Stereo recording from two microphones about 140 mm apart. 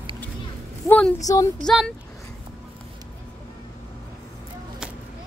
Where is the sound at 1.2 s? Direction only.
25° left (ahead or behind).